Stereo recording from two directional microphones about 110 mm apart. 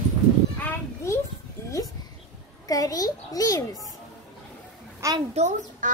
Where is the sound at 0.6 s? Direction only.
20° left (ahead or behind).